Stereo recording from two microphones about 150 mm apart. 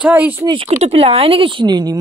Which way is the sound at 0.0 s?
10° right (ahead or behind).